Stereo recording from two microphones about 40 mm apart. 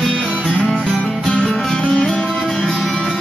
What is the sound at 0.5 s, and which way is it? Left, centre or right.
Music, left.